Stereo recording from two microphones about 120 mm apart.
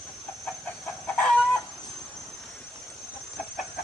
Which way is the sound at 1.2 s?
10° left (ahead or behind).